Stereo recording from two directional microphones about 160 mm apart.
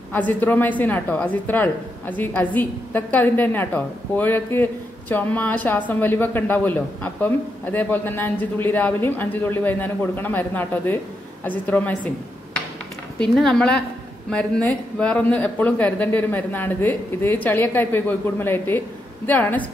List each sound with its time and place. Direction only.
0.1 s speech: 10° left (ahead or behind)
13.2 s a woman's voice: 5° left (ahead or behind)